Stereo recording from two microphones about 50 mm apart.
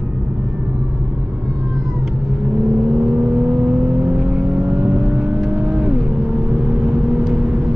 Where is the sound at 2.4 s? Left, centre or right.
Centre.